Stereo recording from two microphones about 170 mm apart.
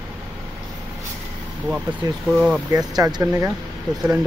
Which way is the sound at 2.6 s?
20° right (ahead or behind).